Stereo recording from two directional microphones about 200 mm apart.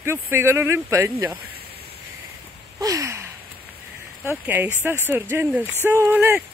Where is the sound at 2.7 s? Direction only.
15° right (ahead or behind).